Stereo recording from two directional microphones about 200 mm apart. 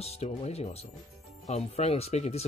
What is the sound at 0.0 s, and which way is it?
Speech, 30° left (ahead or behind).